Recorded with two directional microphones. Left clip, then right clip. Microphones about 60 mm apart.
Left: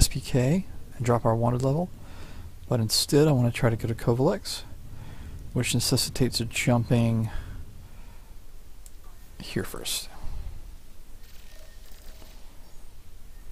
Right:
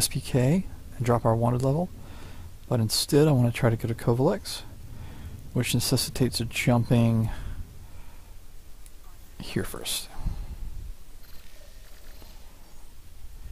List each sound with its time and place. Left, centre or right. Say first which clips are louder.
0.0 s speech: even; centre
9.4 s speech: even; centre